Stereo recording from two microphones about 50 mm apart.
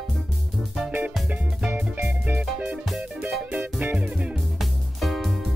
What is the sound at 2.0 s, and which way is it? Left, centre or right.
Music, right.